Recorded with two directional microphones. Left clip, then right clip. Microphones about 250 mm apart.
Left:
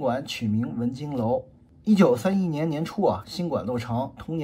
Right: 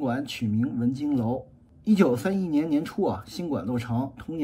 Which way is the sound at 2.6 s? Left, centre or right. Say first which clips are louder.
Left 4 dB; centre.